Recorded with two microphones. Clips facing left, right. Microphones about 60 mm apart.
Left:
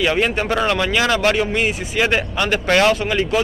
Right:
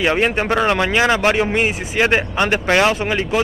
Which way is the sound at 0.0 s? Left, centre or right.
Right.